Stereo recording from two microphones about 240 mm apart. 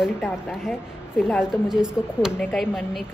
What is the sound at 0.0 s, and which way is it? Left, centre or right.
Speech, centre.